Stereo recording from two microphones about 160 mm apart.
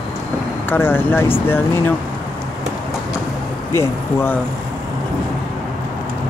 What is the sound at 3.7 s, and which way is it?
Speech, 15° left (ahead or behind).